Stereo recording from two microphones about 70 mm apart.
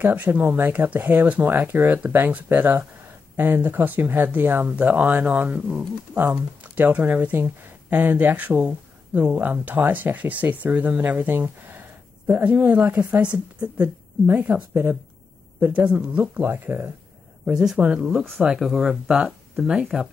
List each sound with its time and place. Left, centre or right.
0.0 s speech: right
16.3 s speech: right
17.5 s speech: centre